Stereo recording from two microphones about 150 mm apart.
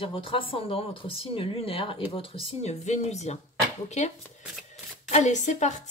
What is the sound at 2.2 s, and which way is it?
Speech, 50° left (ahead or behind).